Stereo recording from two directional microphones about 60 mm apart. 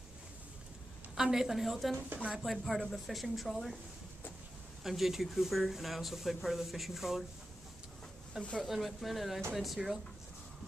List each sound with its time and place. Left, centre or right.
1.1 s speech: centre
4.8 s speech: centre
8.4 s speech: centre
8.6 s speech: centre